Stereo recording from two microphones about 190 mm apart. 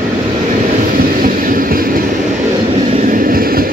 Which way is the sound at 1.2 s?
50° right (ahead or behind).